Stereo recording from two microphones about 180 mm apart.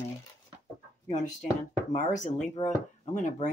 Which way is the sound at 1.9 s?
45° left (ahead or behind).